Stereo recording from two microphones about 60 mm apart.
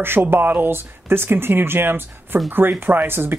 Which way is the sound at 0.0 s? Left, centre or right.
Right.